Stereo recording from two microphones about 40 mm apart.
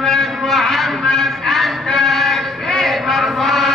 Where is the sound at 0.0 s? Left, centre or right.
Centre.